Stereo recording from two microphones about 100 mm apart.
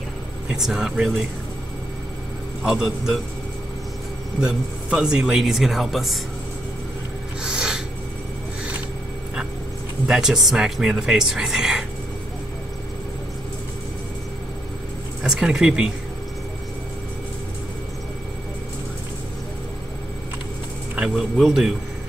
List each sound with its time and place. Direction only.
0.5 s a man's voice: 5° right (ahead or behind)
2.6 s a man's voice: 5° right (ahead or behind)
4.4 s a man's voice: 10° right (ahead or behind)
7.4 s a sound: 10° right (ahead or behind)
10.0 s a man's voice: 5° right (ahead or behind)
15.2 s a man's voice: 5° right (ahead or behind)
20.9 s a man's voice: 5° right (ahead or behind)